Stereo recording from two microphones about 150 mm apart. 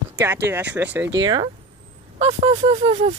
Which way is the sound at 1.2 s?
30° right (ahead or behind).